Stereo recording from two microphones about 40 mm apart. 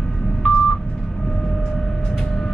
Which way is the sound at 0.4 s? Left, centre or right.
Centre.